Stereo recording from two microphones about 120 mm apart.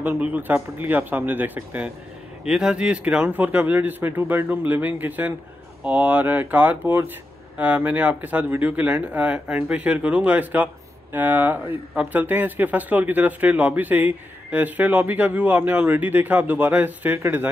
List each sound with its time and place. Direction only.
0.0 s speech: 15° right (ahead or behind)